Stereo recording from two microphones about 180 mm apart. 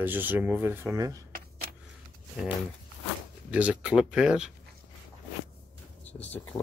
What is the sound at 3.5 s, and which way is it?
Speech, 5° right (ahead or behind).